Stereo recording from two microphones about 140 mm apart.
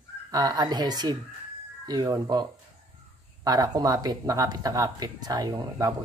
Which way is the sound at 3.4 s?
30° right (ahead or behind).